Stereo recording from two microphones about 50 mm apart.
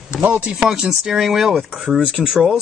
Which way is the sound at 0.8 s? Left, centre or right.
Centre.